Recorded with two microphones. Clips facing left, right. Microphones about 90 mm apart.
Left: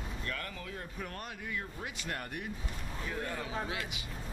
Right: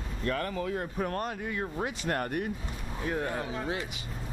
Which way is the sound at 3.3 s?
35° right (ahead or behind).